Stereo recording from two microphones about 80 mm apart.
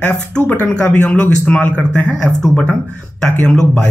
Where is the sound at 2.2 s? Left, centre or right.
Centre.